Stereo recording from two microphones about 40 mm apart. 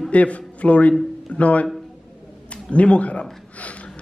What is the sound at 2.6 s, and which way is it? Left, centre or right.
Speech, left.